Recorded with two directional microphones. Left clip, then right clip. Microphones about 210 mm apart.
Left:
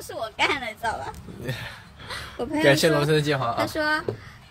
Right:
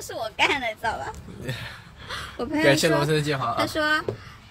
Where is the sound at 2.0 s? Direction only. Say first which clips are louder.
Even; 5° right (ahead or behind).